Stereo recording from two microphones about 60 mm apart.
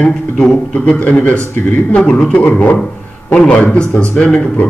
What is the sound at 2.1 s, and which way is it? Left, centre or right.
Speech, centre.